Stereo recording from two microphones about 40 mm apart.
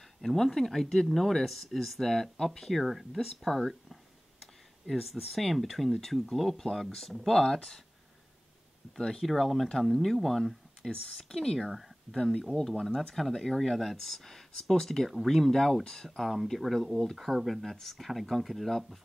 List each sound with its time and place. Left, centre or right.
0.2 s speech: centre
5.2 s speech: centre
8.9 s speech: centre
16.2 s speech: centre